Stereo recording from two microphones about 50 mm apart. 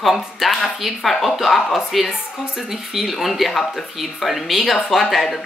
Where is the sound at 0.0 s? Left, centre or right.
Centre.